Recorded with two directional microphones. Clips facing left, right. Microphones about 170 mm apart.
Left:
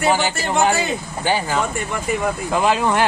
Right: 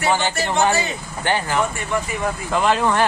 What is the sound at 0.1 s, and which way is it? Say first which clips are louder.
Speech: left 1 dB; 10° left (ahead or behind).